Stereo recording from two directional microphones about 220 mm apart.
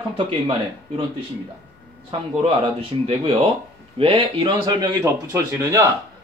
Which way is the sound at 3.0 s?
25° right (ahead or behind).